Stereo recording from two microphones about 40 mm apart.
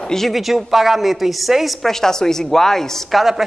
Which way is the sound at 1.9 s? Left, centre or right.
Centre.